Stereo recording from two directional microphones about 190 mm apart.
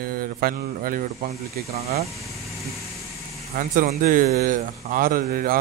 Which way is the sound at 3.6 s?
45° right (ahead or behind).